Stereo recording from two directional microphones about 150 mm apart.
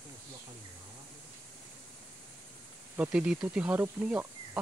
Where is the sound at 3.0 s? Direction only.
5° right (ahead or behind).